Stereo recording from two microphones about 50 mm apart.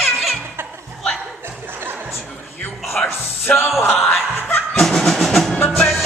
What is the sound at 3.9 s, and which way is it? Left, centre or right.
Chuckle, centre.